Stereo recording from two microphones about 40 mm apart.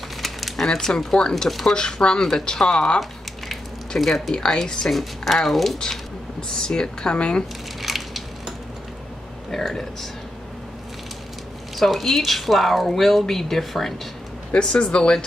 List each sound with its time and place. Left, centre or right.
0.2 s a sound: centre
0.7 s speech: centre
4.0 s speech: centre
6.5 s speech: centre
7.8 s crushing: centre
9.5 s speech: centre
11.7 s speech: centre
14.6 s speech: left